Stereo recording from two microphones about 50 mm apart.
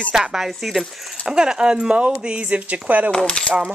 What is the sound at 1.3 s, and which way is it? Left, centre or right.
Speech, centre.